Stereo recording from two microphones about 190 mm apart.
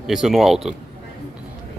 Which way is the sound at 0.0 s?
Centre (ahead or behind).